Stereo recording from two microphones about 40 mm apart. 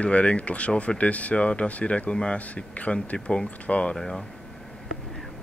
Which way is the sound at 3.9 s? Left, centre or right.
Centre.